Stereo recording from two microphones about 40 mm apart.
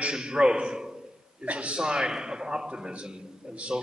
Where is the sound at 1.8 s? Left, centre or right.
Centre.